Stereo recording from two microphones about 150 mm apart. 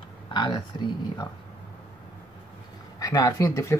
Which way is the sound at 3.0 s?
25° left (ahead or behind).